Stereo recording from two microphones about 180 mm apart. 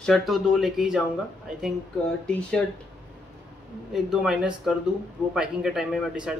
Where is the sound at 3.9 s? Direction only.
Centre (ahead or behind).